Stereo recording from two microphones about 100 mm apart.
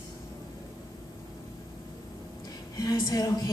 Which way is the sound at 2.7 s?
45° left (ahead or behind).